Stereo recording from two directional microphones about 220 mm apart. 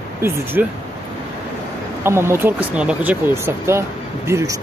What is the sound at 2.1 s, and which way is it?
Speech, 10° right (ahead or behind).